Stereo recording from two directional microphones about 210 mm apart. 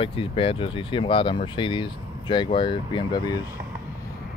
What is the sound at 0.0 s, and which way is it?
Speech, 25° left (ahead or behind).